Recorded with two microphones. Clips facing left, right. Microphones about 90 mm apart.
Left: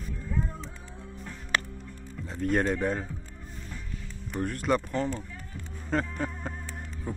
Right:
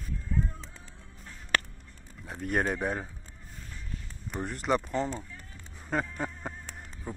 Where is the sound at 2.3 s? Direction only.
5° right (ahead or behind).